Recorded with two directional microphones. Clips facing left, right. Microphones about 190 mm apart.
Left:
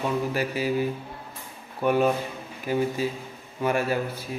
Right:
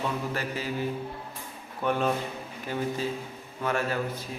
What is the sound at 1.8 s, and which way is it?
Speech, 10° left (ahead or behind).